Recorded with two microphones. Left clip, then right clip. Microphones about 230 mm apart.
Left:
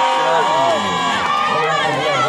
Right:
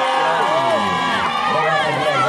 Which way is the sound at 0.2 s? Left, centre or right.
Left.